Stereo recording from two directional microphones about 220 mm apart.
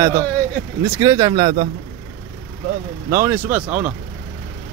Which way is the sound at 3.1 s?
10° right (ahead or behind).